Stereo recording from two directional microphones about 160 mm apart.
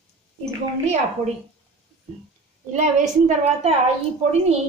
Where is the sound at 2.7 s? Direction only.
45° right (ahead or behind).